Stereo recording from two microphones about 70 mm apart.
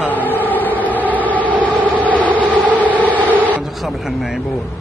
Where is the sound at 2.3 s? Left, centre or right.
Right.